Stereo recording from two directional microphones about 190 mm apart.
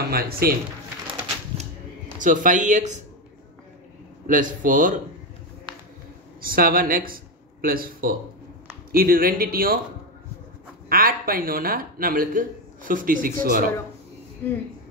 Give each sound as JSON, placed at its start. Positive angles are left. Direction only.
{"t": 0.1, "sound": "speech", "side_deg": -50}
{"t": 2.1, "sound": "speech", "side_deg": -45}
{"t": 4.3, "sound": "speech", "side_deg": -45}
{"t": 6.4, "sound": "speech", "side_deg": -50}
{"t": 10.9, "sound": "speech", "side_deg": -50}
{"t": 14.4, "sound": "speech", "side_deg": 10}